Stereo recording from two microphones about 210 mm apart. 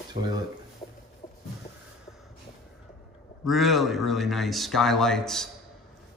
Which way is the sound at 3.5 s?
Centre (ahead or behind).